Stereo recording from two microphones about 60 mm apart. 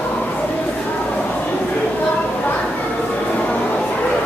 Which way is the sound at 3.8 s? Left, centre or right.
Centre.